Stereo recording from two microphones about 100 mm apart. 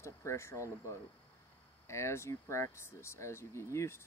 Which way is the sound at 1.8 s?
30° left (ahead or behind).